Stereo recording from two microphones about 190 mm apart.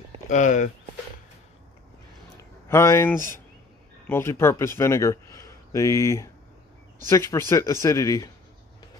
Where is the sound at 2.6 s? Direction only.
15° left (ahead or behind).